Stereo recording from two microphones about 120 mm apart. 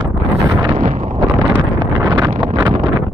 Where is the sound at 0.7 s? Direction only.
80° right.